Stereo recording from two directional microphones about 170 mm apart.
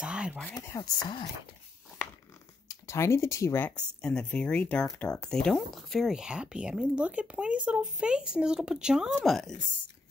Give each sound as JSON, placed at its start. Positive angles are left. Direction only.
{"t": 0.0, "sound": "a sound", "side_deg": -5}
{"t": 0.6, "sound": "speech", "side_deg": 20}
{"t": 2.9, "sound": "speech", "side_deg": 15}